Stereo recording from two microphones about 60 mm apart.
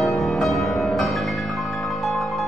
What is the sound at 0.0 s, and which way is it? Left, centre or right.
Music, centre.